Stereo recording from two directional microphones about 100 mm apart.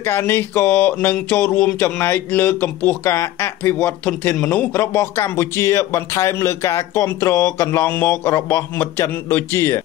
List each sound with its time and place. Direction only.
0.0 s speech: 25° left (ahead or behind)